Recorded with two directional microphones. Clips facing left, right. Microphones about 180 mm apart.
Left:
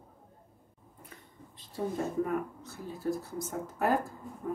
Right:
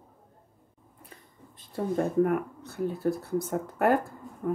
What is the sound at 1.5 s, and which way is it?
Speech, 55° right (ahead or behind).